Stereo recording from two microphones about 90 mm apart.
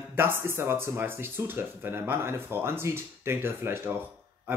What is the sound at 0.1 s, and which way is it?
Speech, 25° right (ahead or behind).